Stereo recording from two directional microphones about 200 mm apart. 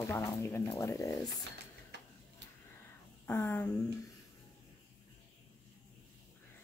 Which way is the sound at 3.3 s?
10° left (ahead or behind).